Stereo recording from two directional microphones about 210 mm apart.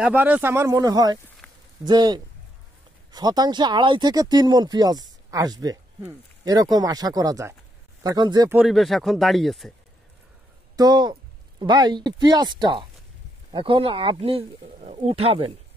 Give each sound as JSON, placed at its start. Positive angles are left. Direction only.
{"t": 0.0, "sound": "speech", "side_deg": -5}
{"t": 1.4, "sound": "a sound", "side_deg": 5}
{"t": 1.9, "sound": "speech", "side_deg": -20}
{"t": 8.5, "sound": "speech", "side_deg": 0}
{"t": 10.8, "sound": "speech", "side_deg": -20}